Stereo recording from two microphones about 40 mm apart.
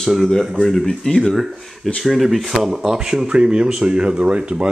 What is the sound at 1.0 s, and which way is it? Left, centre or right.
Speech, centre.